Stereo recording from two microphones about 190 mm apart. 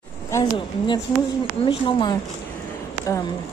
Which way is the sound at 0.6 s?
25° left (ahead or behind).